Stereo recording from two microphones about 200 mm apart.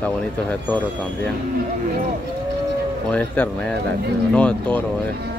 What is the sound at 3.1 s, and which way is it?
Speech, 5° left (ahead or behind).